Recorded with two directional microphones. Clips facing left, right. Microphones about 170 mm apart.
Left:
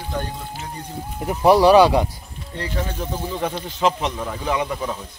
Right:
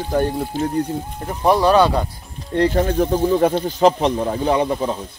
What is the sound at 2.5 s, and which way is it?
Speech, 60° right (ahead or behind).